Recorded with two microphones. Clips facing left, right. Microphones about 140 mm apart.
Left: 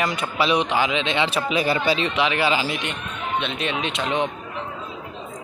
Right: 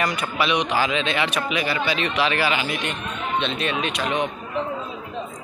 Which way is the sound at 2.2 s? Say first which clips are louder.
Left 1 dB; 20° left (ahead or behind).